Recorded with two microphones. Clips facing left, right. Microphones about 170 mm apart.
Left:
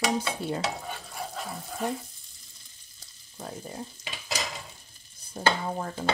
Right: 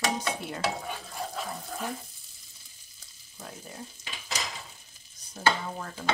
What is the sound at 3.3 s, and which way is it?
Frying, 30° left (ahead or behind).